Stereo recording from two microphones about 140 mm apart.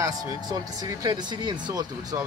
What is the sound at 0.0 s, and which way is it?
Speech, 25° right (ahead or behind).